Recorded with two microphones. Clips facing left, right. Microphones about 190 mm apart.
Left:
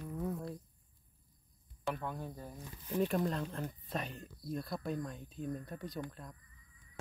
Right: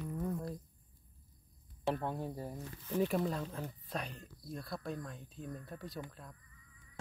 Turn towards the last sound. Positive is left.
turn(degrees=0)  # may be behind; listen again after turning